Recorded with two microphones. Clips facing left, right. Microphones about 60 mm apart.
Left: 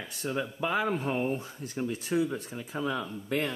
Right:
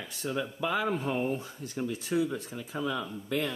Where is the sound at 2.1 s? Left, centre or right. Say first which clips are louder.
Even; centre.